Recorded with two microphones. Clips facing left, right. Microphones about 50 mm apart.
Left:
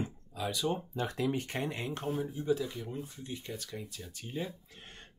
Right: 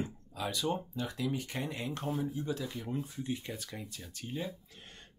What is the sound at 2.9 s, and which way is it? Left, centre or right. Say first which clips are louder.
Speech: right 4 dB; centre.